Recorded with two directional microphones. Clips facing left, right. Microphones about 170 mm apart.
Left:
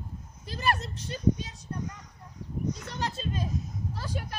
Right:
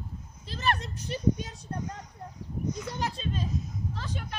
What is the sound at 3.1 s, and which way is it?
Speech, 5° left (ahead or behind).